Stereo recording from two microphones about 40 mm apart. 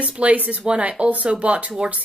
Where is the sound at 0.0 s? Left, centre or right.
Right.